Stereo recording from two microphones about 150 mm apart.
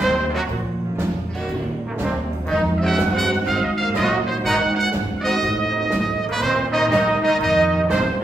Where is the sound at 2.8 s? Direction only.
Centre (ahead or behind).